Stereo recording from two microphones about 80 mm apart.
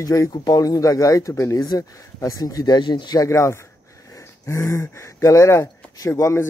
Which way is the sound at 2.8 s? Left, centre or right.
Left.